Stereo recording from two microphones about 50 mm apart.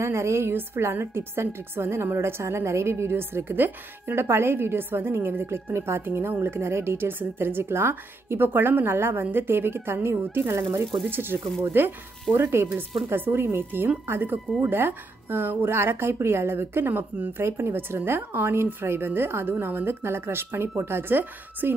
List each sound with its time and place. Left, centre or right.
0.0 s a woman's voice: right
17.4 s a woman's voice: right